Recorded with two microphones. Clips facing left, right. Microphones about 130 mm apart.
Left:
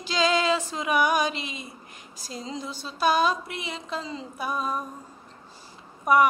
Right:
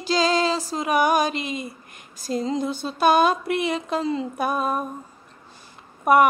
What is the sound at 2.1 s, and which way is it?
Speech, 50° right (ahead or behind).